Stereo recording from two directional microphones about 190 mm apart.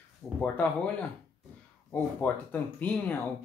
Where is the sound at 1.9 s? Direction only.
10° left (ahead or behind).